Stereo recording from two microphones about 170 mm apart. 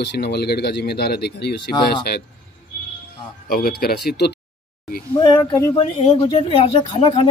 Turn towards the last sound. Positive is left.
turn(degrees=30)  # may be behind; listen again after turning